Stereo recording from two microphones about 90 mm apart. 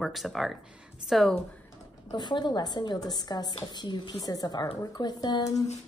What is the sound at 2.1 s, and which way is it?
A woman's voice, 55° left (ahead or behind).